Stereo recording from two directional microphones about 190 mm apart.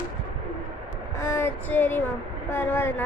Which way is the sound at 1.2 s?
15° left (ahead or behind).